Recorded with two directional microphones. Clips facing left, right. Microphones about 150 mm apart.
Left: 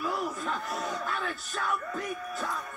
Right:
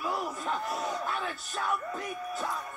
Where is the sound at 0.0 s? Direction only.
25° right (ahead or behind).